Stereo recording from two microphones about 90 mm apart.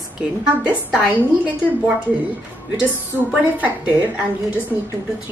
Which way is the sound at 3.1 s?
20° right (ahead or behind).